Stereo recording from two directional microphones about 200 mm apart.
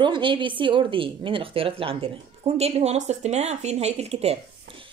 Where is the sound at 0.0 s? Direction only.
25° right (ahead or behind).